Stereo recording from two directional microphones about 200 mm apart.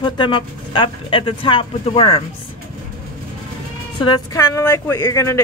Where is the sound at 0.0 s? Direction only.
25° left (ahead or behind).